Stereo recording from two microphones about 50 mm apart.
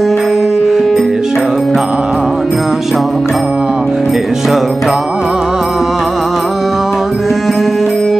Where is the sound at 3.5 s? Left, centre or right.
Centre.